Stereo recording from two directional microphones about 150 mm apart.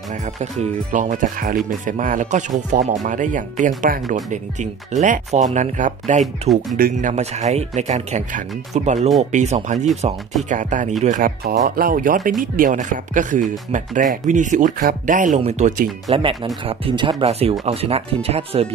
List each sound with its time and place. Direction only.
0.1 s speech: 50° right (ahead or behind)
14.8 s speech: 70° right (ahead or behind); by 15.7 s 50° right (ahead or behind)
16.1 s speech: 35° right (ahead or behind)